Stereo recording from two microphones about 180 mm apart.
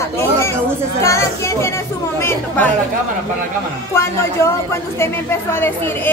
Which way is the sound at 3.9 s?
15° left (ahead or behind).